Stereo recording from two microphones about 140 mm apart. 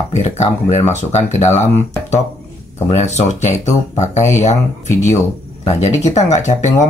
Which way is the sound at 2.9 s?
55° left (ahead or behind).